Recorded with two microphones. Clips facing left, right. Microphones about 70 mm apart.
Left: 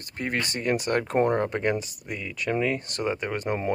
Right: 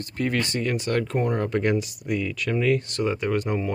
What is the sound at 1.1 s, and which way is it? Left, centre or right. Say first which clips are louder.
Speech: left 2 dB; left.